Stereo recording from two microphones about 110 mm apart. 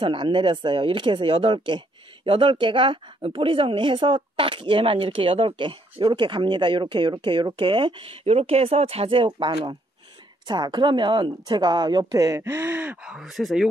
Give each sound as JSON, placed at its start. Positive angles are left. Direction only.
{"t": 0.0, "sound": "a woman's voice", "side_deg": -50}
{"t": 13.0, "sound": "speech", "side_deg": -5}